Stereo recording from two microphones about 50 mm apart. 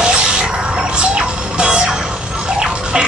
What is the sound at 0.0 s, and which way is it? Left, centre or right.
Music, centre.